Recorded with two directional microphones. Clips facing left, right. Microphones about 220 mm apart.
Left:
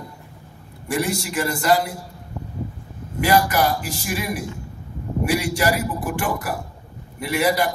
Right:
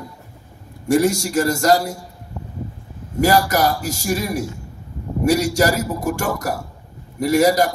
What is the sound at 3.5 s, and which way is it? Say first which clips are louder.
A man's voice: right 2 dB; 40° right (ahead or behind).